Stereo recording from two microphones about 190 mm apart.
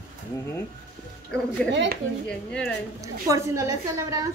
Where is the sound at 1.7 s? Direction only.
65° right (ahead or behind).